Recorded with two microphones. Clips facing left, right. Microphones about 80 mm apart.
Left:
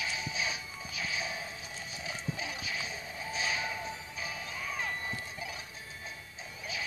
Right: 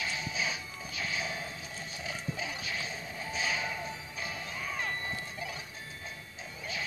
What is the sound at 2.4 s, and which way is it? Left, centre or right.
Music, centre.